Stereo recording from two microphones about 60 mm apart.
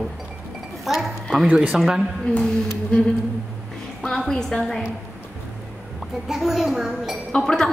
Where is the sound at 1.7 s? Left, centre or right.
Centre.